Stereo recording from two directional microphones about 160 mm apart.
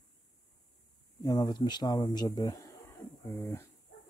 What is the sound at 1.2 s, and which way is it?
Speech, 25° left (ahead or behind).